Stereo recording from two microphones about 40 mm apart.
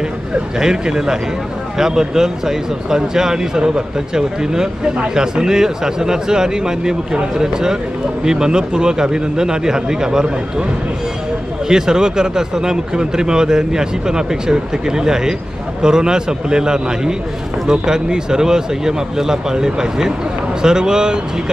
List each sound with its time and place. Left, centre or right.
0.6 s speech: centre
11.7 s speech: centre